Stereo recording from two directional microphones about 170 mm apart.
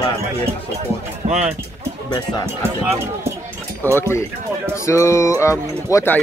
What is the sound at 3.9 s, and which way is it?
Speech, 15° left (ahead or behind).